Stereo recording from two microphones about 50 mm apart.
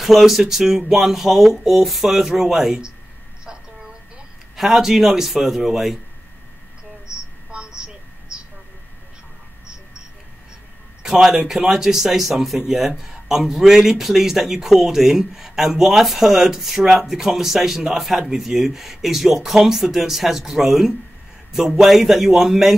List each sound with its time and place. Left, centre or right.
0.0 s speech: centre
4.6 s speech: centre
7.5 s a sound: centre
11.0 s speech: centre